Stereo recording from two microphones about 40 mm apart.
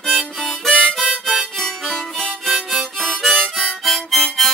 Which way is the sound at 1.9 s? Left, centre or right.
Centre.